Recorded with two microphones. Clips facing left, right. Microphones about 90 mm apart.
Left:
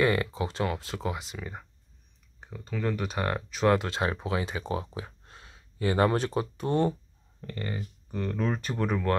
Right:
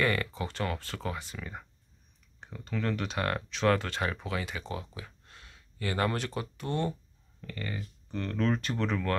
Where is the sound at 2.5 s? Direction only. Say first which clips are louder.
Left 2 dB; 5° left (ahead or behind); by 7.8 s 30° left (ahead or behind).